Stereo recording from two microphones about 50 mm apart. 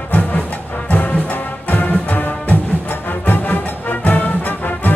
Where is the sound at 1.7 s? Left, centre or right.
Left.